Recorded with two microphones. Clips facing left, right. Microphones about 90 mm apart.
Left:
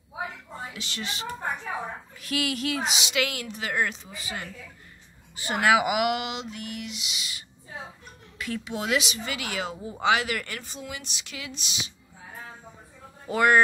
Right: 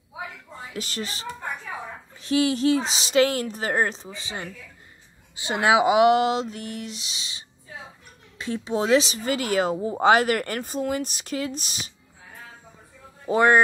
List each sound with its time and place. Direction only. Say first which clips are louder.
0.7 s speech: right 8 dB; 40° right (ahead or behind)
2.2 s speech: right 8 dB; 30° right (ahead or behind)
13.3 s speech: right 3 dB; 25° right (ahead or behind)